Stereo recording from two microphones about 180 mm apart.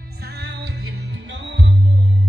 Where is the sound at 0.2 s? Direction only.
65° right (ahead or behind); by 1.7 s 85° right.